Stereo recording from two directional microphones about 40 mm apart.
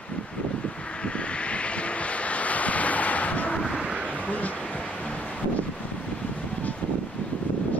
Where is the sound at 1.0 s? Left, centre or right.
Left.